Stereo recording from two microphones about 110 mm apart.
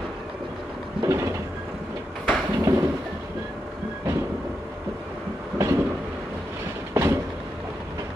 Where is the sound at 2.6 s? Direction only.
30° right (ahead or behind).